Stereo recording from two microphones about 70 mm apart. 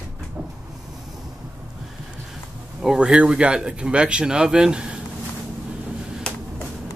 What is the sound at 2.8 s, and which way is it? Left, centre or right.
Speech, centre.